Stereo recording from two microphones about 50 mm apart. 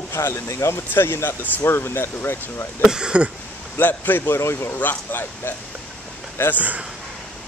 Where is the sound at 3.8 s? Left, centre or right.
Left.